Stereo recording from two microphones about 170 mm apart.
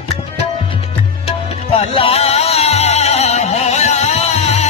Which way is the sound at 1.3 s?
35° left (ahead or behind).